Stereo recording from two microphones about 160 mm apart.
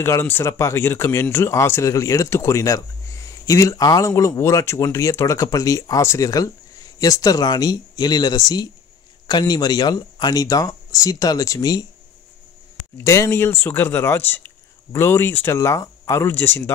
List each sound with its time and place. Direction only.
0.0 s speech: 15° left (ahead or behind)
12.9 s speech: 15° left (ahead or behind)